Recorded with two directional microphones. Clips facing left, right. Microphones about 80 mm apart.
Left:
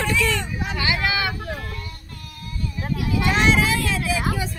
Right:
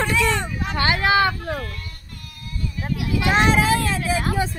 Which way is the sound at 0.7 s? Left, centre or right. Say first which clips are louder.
Right 6 dB; right.